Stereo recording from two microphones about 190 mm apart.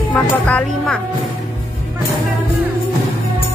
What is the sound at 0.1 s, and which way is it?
Speech, 5° left (ahead or behind).